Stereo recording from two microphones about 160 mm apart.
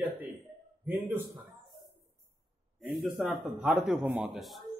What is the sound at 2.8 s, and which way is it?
A man's voice, centre (ahead or behind).